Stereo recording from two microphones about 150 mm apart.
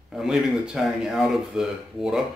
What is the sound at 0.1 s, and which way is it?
Speech, 5° right (ahead or behind).